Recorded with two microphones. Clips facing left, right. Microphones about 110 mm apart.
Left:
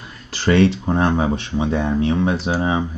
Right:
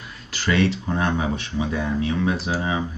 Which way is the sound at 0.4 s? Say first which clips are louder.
Left 6 dB; 30° left (ahead or behind).